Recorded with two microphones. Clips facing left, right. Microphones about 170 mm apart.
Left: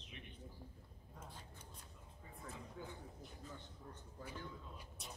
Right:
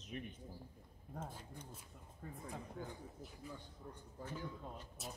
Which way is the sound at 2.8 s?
50° right (ahead or behind).